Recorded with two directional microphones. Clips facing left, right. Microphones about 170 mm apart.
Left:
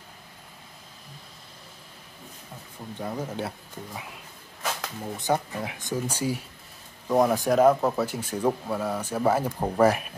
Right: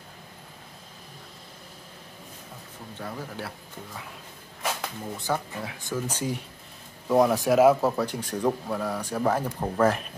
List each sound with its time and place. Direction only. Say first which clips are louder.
3.0 s speech: left 5 dB; 20° left (ahead or behind)
5.0 s speech: left 4 dB; 20° left (ahead or behind)